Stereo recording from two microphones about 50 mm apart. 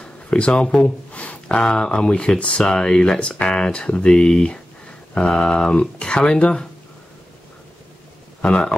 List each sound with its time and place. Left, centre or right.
0.0 s a sound: centre
1.6 s speech: centre
8.4 s speech: left